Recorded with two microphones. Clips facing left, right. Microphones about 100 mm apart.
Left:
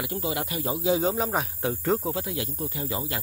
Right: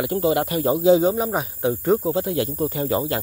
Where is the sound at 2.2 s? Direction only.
45° right (ahead or behind).